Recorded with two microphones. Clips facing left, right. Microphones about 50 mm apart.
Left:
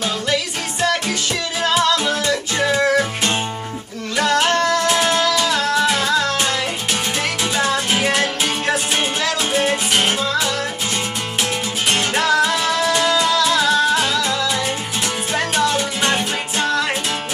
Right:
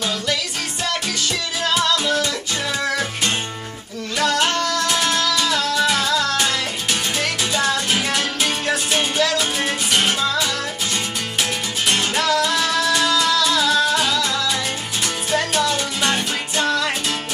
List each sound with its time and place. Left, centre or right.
1.7 s music: left
4.2 s music: left
12.1 s music: left
15.3 s music: left